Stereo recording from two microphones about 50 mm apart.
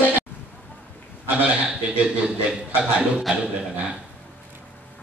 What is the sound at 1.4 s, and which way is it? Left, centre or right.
Speech, right.